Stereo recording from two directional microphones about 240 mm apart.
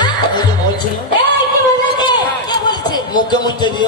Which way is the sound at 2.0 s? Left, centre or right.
Centre.